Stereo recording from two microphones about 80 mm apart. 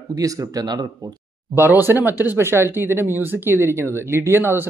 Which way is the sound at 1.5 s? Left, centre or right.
Right.